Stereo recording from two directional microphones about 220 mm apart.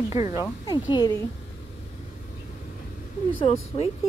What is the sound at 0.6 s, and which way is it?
Speech, 20° left (ahead or behind).